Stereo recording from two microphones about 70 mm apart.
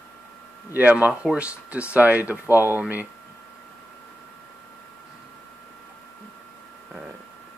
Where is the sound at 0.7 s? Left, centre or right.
Right.